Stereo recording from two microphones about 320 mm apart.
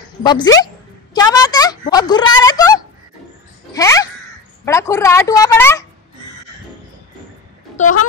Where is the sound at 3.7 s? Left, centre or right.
Centre.